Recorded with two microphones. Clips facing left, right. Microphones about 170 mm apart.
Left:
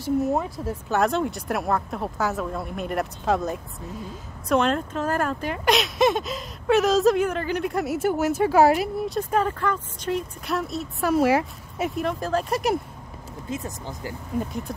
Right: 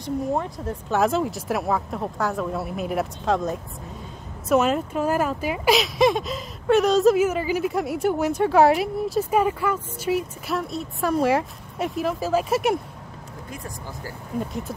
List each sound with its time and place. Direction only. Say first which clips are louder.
0.0 s speech: left 2 dB; 5° left (ahead or behind)
13.5 s speech: left 5 dB; 20° left (ahead or behind)